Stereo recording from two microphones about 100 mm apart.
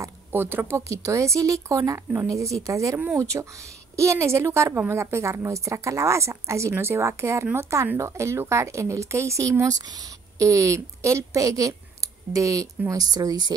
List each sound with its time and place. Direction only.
0.0 s a woman's voice: 20° right (ahead or behind); by 13.6 s 40° right (ahead or behind)